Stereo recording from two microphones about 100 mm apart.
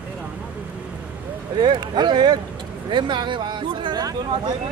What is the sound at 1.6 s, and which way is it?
Speech, 50° right (ahead or behind).